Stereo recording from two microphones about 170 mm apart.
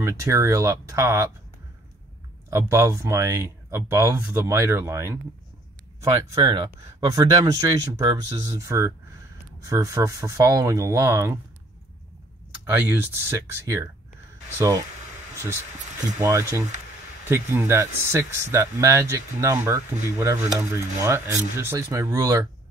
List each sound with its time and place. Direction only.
0.0 s speech: 15° right (ahead or behind)
2.5 s speech: 15° right (ahead or behind)
6.3 s speech: 20° right (ahead or behind)
12.6 s speech: 10° right (ahead or behind)
16.2 s speech: 15° right (ahead or behind)